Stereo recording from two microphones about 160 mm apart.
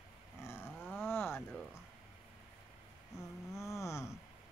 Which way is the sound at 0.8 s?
15° left (ahead or behind).